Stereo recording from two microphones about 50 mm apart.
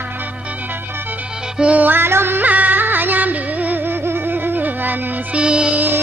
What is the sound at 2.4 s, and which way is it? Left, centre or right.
Music, right.